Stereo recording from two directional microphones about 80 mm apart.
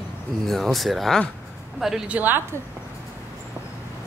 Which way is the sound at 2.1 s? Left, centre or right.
Right.